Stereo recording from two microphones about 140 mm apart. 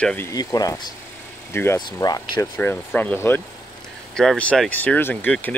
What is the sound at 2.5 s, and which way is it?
Speech, 15° left (ahead or behind).